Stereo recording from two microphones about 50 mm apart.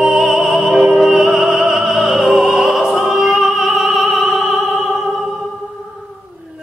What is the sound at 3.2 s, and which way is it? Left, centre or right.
Opera, centre.